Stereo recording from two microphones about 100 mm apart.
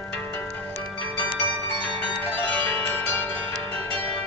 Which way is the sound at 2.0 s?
15° left (ahead or behind).